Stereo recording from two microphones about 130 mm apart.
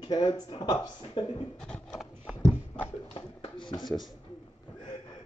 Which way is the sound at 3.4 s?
40° left (ahead or behind).